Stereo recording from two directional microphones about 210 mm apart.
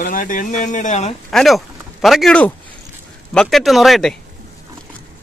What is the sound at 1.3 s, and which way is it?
Speech, centre (ahead or behind).